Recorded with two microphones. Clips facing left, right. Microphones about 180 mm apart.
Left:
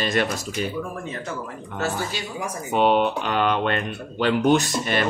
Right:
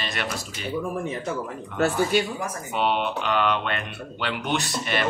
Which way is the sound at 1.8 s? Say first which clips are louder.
Right 6 dB; 55° right (ahead or behind).